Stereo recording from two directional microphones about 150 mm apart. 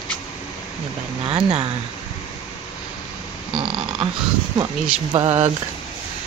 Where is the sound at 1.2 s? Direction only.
35° right (ahead or behind).